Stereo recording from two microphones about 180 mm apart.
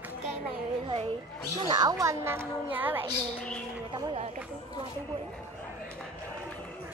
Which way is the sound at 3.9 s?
25° right (ahead or behind).